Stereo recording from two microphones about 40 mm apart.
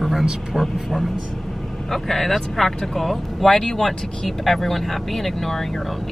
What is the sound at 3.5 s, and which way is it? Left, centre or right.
Speech, centre.